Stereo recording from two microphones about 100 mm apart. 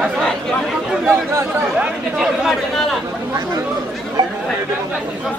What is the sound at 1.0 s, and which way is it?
Speech, 25° right (ahead or behind).